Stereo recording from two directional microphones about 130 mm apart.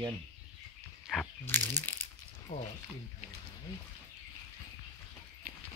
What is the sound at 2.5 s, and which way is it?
Speech, 65° left (ahead or behind).